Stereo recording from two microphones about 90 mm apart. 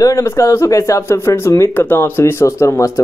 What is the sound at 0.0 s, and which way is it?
A woman's voice, 35° left (ahead or behind).